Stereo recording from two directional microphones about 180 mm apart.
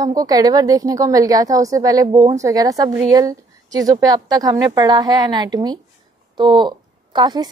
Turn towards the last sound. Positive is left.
turn(degrees=-25)  # may be behind; listen again after turning